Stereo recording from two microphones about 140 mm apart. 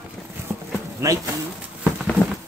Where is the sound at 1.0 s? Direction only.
20° right (ahead or behind).